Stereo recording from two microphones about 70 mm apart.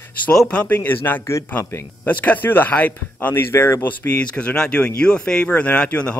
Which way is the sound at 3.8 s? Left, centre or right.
Left.